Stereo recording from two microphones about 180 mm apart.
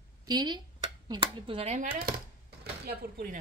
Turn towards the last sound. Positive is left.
turn(degrees=-55)  # may be behind; listen again after turning